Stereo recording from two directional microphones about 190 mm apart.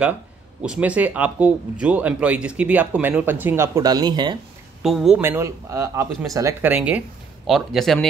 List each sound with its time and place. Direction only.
0.6 s speech: 5° right (ahead or behind); by 4.4 s 20° right (ahead or behind)
4.8 s a man's voice: centre (ahead or behind)
5.2 s a man's voice: 15° right (ahead or behind); by 8.1 s centre (ahead or behind)